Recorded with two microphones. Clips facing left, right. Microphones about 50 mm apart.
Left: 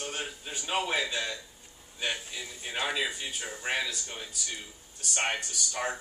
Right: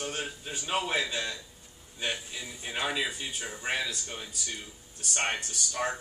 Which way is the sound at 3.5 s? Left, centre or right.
Centre.